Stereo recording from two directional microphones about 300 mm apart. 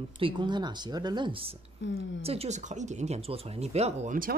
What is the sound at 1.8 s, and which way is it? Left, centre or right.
Speech, left.